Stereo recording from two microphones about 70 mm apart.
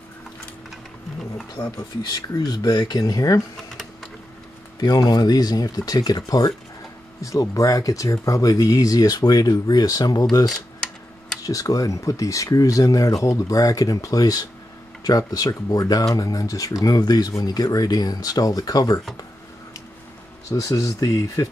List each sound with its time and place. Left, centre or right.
2.1 s speech: left
4.7 s speech: left
7.2 s speech: left
10.3 s speech: left
16.8 s speech: left
20.4 s speech: left